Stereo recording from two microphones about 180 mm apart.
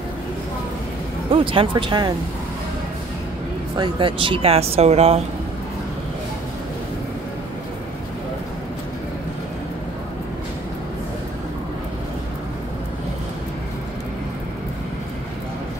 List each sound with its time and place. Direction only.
1.3 s speech: 30° right (ahead or behind)
3.7 s speech: 25° right (ahead or behind)